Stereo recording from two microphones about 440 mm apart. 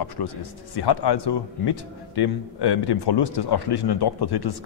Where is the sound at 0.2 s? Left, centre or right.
Left.